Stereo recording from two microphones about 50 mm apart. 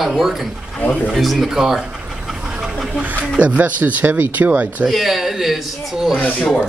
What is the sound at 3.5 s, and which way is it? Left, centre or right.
Speech, right.